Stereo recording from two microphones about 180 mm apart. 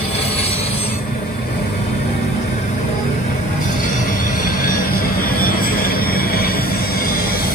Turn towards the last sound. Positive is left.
turn(degrees=55)  # may be behind; listen again after turning